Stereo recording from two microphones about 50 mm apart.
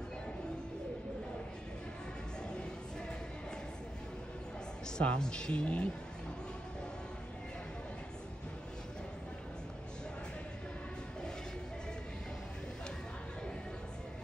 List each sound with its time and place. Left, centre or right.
4.9 s speech: centre